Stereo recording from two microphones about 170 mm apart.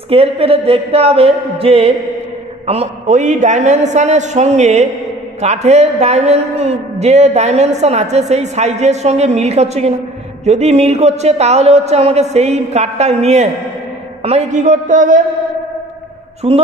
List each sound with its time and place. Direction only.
0.1 s a man's voice: 35° right (ahead or behind)
16.4 s a man's voice: 40° right (ahead or behind)